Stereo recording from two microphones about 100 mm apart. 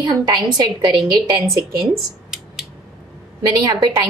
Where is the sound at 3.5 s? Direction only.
40° right (ahead or behind).